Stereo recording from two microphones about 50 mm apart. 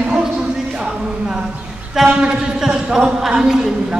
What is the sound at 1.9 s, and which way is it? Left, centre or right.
Speech, centre.